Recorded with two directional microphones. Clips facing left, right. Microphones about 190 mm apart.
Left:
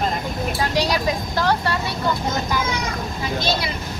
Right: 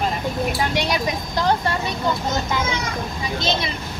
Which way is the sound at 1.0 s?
20° right (ahead or behind).